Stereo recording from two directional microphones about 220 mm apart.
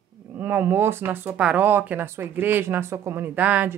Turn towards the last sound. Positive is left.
turn(degrees=-5)  # may be behind; listen again after turning